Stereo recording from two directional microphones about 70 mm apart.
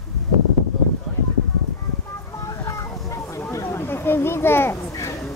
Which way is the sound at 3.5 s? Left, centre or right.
Left.